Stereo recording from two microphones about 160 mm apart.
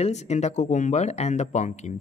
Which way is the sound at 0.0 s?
45° left (ahead or behind).